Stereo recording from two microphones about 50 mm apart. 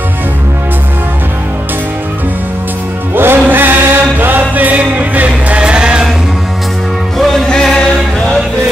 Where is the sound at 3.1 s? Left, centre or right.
Right.